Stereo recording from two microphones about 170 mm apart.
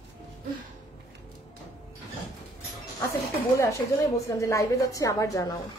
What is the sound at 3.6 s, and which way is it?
A woman's voice, 20° left (ahead or behind).